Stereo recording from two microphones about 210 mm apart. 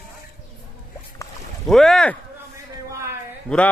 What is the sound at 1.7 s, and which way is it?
Speech, centre (ahead or behind).